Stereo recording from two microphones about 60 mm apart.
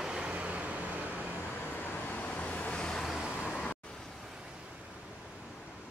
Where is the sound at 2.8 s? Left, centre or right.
Centre.